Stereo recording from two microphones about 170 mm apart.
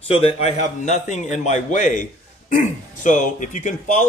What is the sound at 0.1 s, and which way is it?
A man's voice, 35° left (ahead or behind).